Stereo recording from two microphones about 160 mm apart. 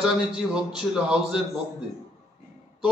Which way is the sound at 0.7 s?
5° right (ahead or behind).